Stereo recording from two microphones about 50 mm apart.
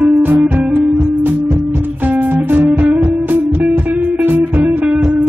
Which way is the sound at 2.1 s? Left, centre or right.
Right.